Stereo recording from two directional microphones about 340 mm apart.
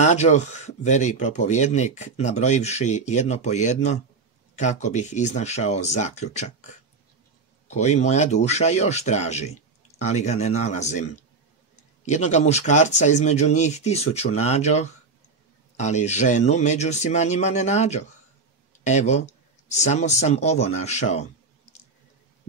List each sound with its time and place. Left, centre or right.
0.0 s speech: centre
12.1 s speech: centre